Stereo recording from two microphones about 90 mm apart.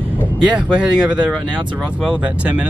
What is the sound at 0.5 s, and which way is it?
Speech, 10° right (ahead or behind).